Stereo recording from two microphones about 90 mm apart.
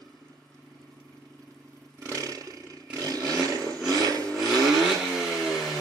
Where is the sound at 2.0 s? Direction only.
40° right (ahead or behind).